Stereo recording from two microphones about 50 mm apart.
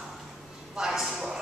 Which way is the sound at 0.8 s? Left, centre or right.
Centre.